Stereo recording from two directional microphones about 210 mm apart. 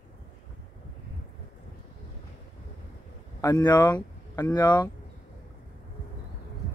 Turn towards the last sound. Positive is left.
turn(degrees=20)  # may be behind; listen again after turning